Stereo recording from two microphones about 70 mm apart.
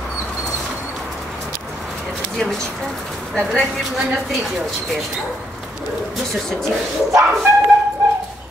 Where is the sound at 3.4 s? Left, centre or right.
Centre.